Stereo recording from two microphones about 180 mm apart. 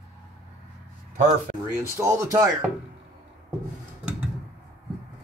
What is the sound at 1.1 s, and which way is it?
Speech, 50° right (ahead or behind).